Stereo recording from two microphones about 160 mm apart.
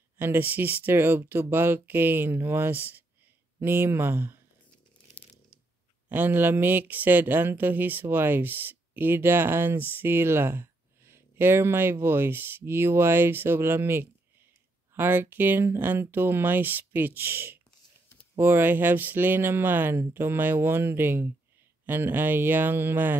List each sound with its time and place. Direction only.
0.2 s speech: 10° right (ahead or behind)
6.0 s speech: 10° right (ahead or behind)